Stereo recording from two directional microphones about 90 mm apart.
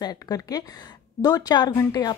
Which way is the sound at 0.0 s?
45° left (ahead or behind).